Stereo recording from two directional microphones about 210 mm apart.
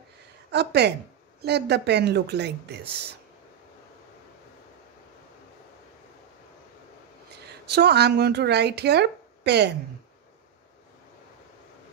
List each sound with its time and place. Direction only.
0.5 s speech: 55° right (ahead or behind)
7.6 s speech: 50° right (ahead or behind)